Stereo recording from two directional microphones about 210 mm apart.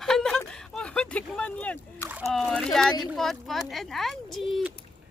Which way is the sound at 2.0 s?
5° right (ahead or behind).